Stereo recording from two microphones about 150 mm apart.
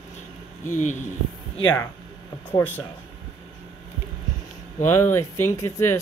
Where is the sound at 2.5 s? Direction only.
10° left (ahead or behind).